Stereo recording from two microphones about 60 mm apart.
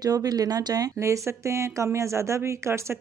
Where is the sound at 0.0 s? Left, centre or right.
Right.